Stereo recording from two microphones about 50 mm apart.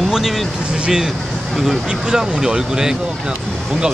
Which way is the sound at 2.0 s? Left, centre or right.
Centre.